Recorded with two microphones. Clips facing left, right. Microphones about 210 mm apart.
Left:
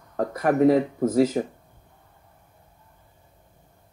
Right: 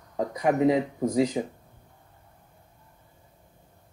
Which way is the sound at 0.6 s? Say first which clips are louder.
Left 7 dB; 5° left (ahead or behind).